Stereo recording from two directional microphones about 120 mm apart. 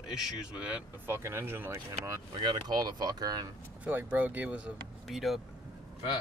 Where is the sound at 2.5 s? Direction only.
35° right (ahead or behind).